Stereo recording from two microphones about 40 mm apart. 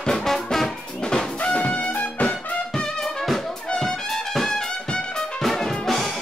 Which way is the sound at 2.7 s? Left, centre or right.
Centre.